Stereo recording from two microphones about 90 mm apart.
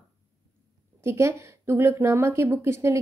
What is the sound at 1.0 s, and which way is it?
A woman's voice, 30° right (ahead or behind).